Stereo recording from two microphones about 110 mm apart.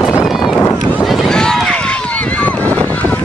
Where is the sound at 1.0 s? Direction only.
Centre (ahead or behind).